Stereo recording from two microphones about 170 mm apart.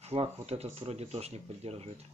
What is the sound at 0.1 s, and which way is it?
Speech, 35° right (ahead or behind).